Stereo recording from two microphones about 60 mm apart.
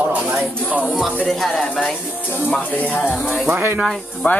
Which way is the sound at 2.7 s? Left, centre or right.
Left.